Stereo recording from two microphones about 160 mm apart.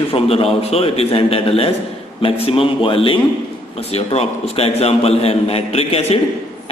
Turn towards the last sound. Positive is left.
turn(degrees=40)  # may be behind; listen again after turning